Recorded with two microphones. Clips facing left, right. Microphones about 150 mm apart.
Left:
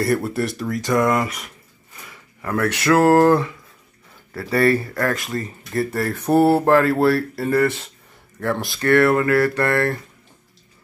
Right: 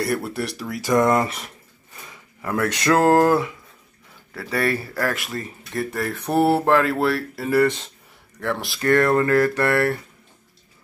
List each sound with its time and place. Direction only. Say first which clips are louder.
0.0 s speech: left 4 dB; centre (ahead or behind)
0.9 s speech: right 2 dB; 25° right (ahead or behind)
2.0 s speech: left 1 dB; 15° right (ahead or behind)
4.3 s speech: left 6 dB; centre (ahead or behind)
7.5 s speech: right 1 dB; 15° right (ahead or behind)
8.4 s speech: left 3 dB; centre (ahead or behind)
9.6 s speech: even; 15° right (ahead or behind)